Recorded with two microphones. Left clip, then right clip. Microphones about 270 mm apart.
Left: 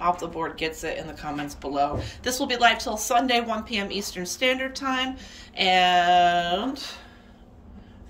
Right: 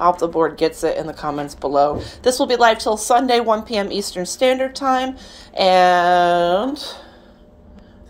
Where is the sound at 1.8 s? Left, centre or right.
Centre.